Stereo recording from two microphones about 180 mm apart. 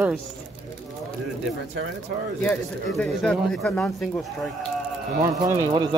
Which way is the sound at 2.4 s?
5° left (ahead or behind).